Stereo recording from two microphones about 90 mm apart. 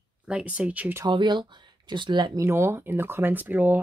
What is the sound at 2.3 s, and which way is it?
Speech, 30° right (ahead or behind).